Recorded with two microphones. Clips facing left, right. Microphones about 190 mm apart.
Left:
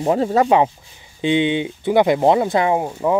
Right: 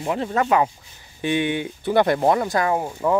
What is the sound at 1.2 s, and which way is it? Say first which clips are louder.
Speech: left 5 dB; 20° left (ahead or behind).